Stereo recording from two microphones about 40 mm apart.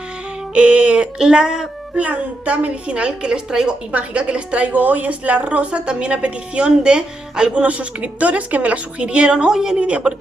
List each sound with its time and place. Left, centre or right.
0.6 s a woman's voice: right
2.0 s a woman's voice: right
3.9 s a woman's voice: right
7.6 s a woman's voice: right
9.0 s a woman's voice: right
9.5 s a woman's voice: centre
9.8 s a woman's voice: right